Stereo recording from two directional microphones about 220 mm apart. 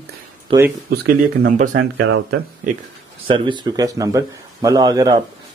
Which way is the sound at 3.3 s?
20° right (ahead or behind).